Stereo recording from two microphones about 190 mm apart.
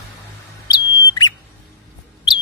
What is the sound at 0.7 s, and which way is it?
Bird, 20° left (ahead or behind).